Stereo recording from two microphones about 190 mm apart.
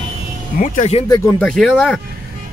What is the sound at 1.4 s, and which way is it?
Speech, centre (ahead or behind).